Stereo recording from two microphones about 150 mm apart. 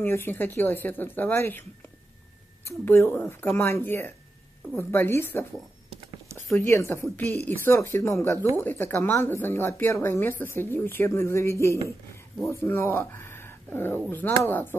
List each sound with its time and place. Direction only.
0.0 s speech: 15° left (ahead or behind)
2.6 s speech: 15° left (ahead or behind)
6.6 s speech: 15° left (ahead or behind)